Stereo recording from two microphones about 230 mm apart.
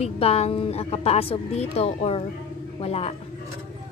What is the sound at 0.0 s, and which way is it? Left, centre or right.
A woman's voice, left.